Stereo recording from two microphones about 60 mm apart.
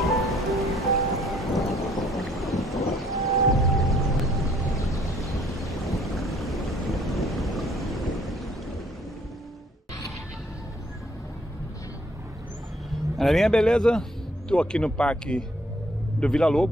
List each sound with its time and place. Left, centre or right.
0.0 s music: centre
5.2 s a sound: centre
13.2 s speech: centre